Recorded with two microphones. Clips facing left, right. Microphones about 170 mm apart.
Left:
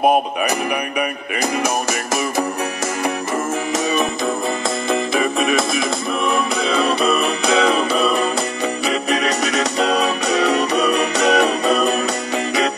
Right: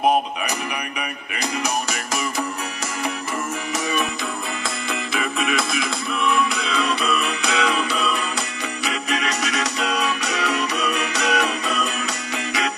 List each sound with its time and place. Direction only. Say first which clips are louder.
3.7 s music: left 4 dB; 40° left (ahead or behind)